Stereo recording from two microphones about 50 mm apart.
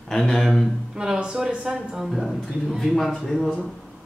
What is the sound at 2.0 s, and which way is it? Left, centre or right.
Speech, centre.